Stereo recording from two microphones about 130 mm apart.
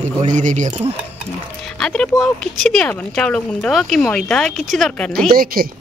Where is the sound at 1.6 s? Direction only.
5° left (ahead or behind).